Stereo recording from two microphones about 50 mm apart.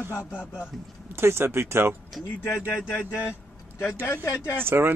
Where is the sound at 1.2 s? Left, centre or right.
Right.